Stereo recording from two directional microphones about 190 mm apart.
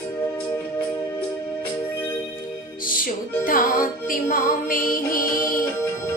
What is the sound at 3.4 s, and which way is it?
Music, 45° left (ahead or behind).